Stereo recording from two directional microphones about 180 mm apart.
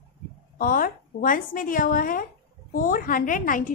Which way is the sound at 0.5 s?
50° left (ahead or behind).